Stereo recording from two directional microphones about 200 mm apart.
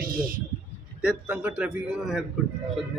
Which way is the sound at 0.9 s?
5° right (ahead or behind).